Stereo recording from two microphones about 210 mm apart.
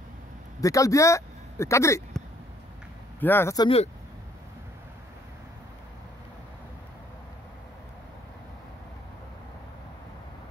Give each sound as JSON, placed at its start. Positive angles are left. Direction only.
{"t": 0.6, "sound": "speech", "side_deg": 15}
{"t": 3.2, "sound": "speech", "side_deg": 10}